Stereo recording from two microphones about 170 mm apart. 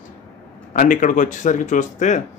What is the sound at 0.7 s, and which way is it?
Speech, 50° left (ahead or behind).